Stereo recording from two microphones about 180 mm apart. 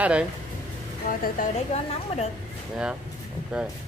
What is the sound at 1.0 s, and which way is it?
A woman's voice, 50° left (ahead or behind).